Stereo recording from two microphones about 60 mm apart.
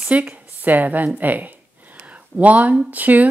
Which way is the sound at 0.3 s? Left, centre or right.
Right.